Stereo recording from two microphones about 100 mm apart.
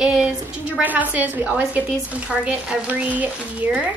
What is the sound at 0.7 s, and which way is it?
Speech, 15° right (ahead or behind).